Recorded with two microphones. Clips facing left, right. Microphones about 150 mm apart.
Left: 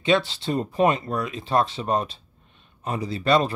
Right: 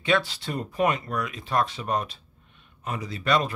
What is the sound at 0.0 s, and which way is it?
Speech, 25° left (ahead or behind).